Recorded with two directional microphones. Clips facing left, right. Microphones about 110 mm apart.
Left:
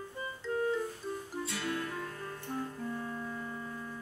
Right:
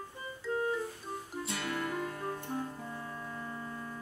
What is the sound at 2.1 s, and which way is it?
Music, 30° right (ahead or behind).